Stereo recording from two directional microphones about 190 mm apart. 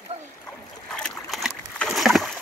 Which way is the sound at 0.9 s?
Centre (ahead or behind).